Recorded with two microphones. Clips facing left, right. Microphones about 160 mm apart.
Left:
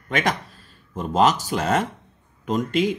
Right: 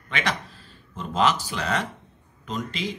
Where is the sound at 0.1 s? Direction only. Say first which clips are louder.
Left 5 dB; 45° left (ahead or behind).